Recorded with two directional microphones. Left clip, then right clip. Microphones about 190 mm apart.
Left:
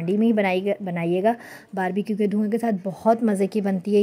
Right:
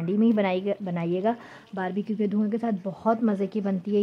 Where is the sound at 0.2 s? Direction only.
10° left (ahead or behind).